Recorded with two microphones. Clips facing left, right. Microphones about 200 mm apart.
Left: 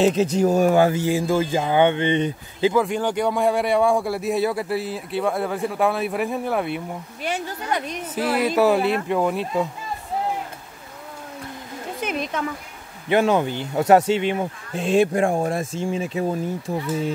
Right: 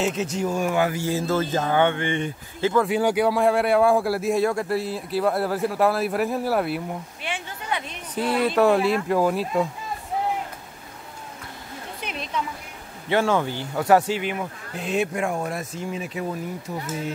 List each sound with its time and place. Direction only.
0.0 s speech: 35° left (ahead or behind)
0.9 s speech: 15° left (ahead or behind)
2.9 s speech: 10° right (ahead or behind)
7.2 s speech: 40° left (ahead or behind)
8.1 s speech: 5° left (ahead or behind)
12.0 s a sound: 45° left (ahead or behind)
13.1 s speech: 20° left (ahead or behind)